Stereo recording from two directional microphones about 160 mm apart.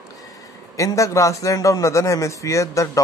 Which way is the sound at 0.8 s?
20° left (ahead or behind).